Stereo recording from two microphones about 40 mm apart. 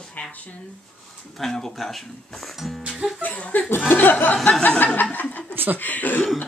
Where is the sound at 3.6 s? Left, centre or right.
Left.